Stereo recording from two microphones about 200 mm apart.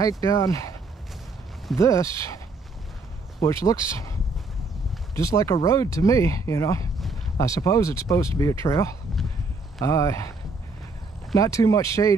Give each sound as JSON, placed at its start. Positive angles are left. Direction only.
{"t": 0.2, "sound": "speech", "side_deg": 15}
{"t": 1.8, "sound": "speech", "side_deg": 15}
{"t": 5.1, "sound": "speech", "side_deg": 15}
{"t": 11.3, "sound": "speech", "side_deg": 15}